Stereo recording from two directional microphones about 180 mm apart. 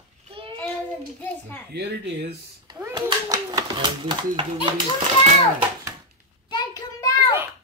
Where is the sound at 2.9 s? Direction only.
25° right (ahead or behind).